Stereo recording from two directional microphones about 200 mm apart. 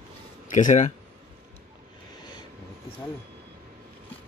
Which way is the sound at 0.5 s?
40° left (ahead or behind).